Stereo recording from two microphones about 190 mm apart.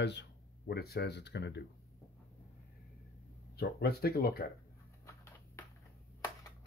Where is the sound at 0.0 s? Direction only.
65° left (ahead or behind).